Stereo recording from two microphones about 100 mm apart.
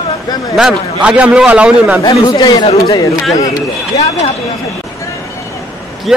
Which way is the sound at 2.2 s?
40° left (ahead or behind).